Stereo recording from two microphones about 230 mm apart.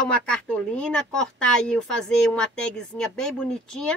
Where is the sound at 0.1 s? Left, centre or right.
Centre.